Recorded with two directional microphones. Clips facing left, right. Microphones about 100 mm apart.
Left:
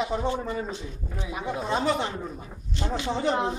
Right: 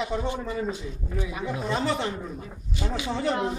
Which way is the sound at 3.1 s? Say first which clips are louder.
Left 1 dB; 20° left (ahead or behind).